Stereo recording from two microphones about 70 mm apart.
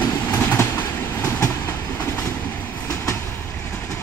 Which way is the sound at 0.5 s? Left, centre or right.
Left.